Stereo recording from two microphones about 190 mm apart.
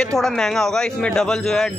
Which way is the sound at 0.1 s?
Centre (ahead or behind).